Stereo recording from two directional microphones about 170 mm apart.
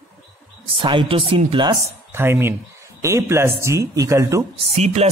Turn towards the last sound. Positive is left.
turn(degrees=-40)  # may be behind; listen again after turning